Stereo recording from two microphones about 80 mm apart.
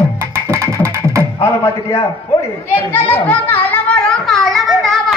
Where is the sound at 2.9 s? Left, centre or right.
Left.